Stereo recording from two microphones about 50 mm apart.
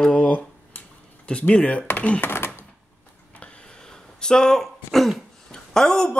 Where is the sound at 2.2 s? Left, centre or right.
Left.